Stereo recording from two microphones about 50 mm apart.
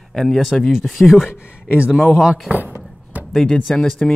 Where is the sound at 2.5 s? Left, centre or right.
Right.